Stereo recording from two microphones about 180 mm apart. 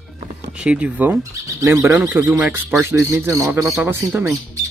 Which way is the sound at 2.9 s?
15° right (ahead or behind).